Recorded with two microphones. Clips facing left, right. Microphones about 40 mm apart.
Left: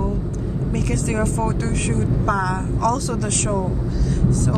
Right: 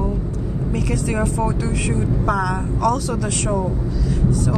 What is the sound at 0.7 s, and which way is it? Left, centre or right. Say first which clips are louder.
Speech: right 1 dB; centre.